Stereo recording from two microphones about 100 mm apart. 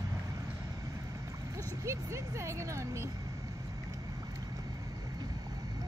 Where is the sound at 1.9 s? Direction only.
30° right (ahead or behind).